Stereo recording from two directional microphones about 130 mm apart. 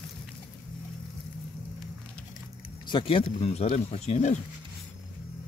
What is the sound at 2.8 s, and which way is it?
Speech, 40° left (ahead or behind).